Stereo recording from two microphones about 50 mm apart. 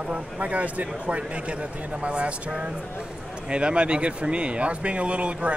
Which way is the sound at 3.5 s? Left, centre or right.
Right.